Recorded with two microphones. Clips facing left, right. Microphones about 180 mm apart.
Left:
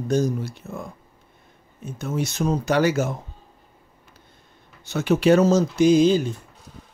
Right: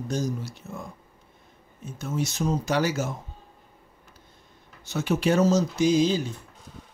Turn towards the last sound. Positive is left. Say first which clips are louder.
# left 5 dB
turn(degrees=55)  # may be behind; listen again after turning